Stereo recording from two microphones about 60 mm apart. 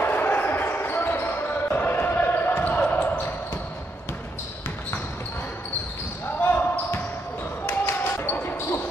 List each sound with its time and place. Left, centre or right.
0.0 s basketball bounce: left
6.4 s basketball bounce: left